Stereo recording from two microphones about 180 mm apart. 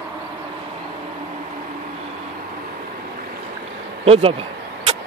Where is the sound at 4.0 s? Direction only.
30° right (ahead or behind).